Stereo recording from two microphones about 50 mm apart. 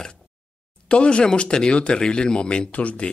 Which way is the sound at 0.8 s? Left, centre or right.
Left.